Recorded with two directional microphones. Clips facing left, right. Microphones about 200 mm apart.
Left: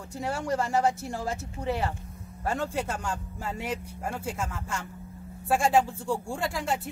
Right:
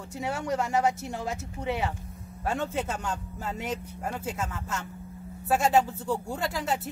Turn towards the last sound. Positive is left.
turn(degrees=0)  # may be behind; listen again after turning